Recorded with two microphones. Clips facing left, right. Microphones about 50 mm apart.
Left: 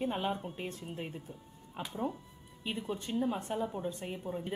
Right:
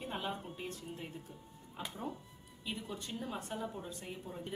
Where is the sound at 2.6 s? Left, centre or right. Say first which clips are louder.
Left 5 dB; left.